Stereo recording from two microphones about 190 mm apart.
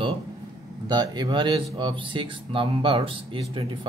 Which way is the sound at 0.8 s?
20° right (ahead or behind).